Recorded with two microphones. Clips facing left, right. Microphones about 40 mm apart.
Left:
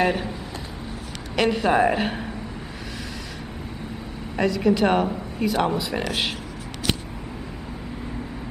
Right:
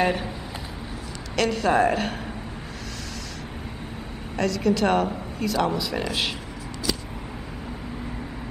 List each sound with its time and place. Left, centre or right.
0.0 s speech: centre
1.3 s a woman's voice: centre
4.4 s a woman's voice: centre